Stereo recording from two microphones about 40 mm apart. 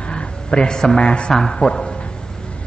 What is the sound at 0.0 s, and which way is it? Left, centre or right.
Speech, left.